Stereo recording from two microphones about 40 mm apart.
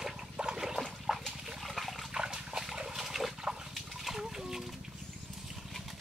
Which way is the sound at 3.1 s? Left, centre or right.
Centre.